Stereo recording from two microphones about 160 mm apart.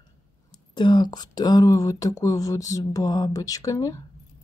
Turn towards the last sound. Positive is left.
turn(degrees=20)  # may be behind; listen again after turning